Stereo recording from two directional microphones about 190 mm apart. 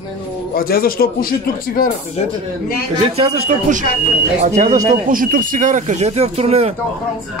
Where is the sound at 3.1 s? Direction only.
35° right (ahead or behind).